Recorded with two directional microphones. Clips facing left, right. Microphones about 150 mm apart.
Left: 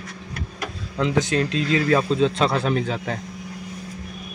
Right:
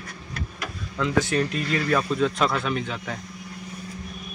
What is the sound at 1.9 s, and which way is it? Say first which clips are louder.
Speech: left 2 dB; 25° left (ahead or behind).